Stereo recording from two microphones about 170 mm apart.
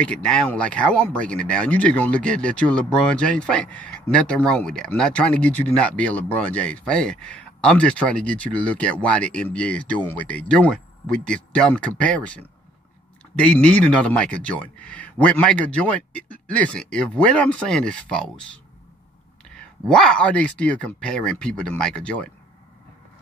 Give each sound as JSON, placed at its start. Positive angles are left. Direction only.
{"t": 0.0, "sound": "speech", "side_deg": 5}
{"t": 19.9, "sound": "speech", "side_deg": 5}